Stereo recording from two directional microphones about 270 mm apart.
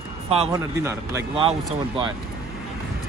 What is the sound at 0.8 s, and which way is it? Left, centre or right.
Speech, centre.